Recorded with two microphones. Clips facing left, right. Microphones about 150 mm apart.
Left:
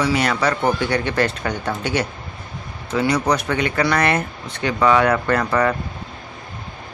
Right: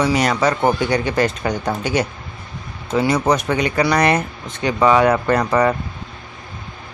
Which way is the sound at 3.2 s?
20° right (ahead or behind).